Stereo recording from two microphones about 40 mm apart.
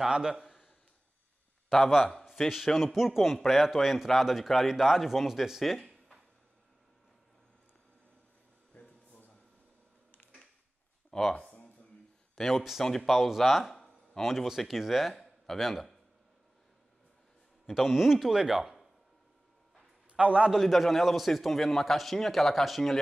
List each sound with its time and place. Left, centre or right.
0.1 s a man's voice: centre
1.9 s a man's voice: centre
8.7 s a sound: left
11.1 s a sound: centre
12.5 s a man's voice: centre
12.8 s a man's voice: centre
17.6 s speech: centre
20.2 s a man's voice: right
20.5 s a man's voice: centre